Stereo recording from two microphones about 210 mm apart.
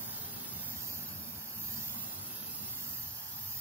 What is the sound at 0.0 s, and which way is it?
Vehicle, 10° right (ahead or behind).